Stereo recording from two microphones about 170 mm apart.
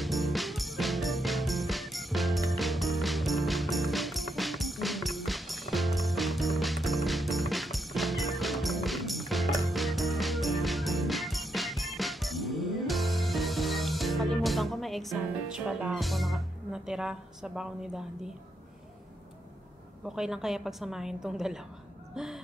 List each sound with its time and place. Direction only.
0.0 s music: centre (ahead or behind)
20.2 s a woman's voice: 5° right (ahead or behind)
22.1 s a sound: 5° right (ahead or behind)